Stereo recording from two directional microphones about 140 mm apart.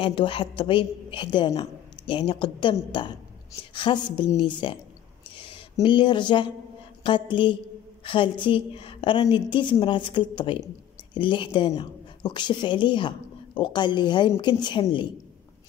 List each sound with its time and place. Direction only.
0.0 s a woman's voice: 40° left (ahead or behind)
5.3 s a sound: 35° left (ahead or behind)
7.0 s a woman's voice: 35° left (ahead or behind)